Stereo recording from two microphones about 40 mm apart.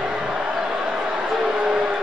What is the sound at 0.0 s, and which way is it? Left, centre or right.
Music, centre.